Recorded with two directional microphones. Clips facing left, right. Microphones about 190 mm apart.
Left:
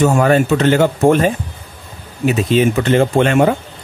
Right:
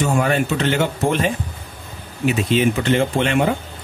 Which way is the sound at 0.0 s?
45° left (ahead or behind).